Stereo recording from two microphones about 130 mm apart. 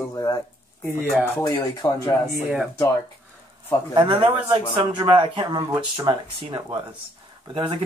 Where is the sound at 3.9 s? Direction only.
35° right (ahead or behind).